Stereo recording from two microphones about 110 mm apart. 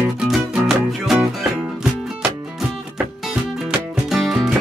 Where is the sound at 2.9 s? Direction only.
5° right (ahead or behind).